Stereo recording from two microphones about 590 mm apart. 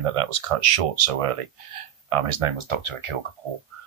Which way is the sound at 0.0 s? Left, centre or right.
Right.